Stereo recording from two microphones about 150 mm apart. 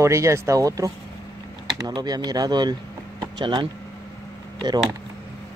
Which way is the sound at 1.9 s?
25° right (ahead or behind).